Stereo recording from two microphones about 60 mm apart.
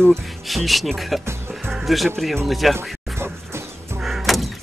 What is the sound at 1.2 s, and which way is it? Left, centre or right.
Music, right.